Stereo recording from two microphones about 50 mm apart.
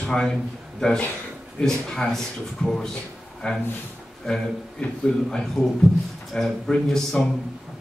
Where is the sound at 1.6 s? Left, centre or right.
Centre.